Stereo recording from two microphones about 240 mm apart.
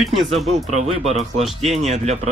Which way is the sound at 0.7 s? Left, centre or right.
Right.